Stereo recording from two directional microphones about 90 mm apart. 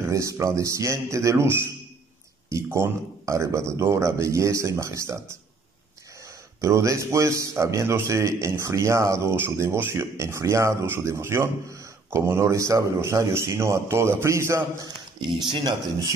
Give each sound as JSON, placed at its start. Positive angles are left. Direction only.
{"t": 0.0, "sound": "speech", "side_deg": -35}
{"t": 6.6, "sound": "speech", "side_deg": -35}
{"t": 15.1, "sound": "speech", "side_deg": -60}